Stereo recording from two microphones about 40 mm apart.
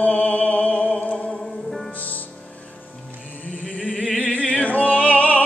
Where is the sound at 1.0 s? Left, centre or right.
Left.